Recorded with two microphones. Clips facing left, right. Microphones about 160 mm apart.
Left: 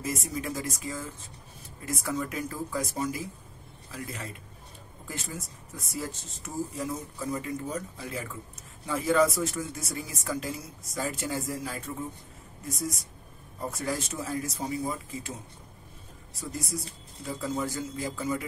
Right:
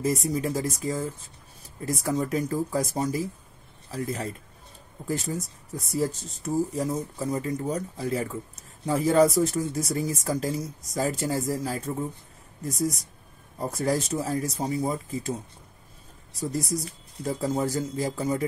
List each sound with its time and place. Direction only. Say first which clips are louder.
0.0 s speech: right 7 dB; 35° right (ahead or behind)
16.3 s speech: right 7 dB; 40° right (ahead or behind)